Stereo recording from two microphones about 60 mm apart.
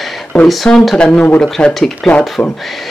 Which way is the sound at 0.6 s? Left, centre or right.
Centre.